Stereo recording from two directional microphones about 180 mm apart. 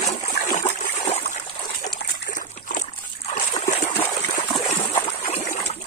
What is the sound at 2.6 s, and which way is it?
Dog, 45° left (ahead or behind).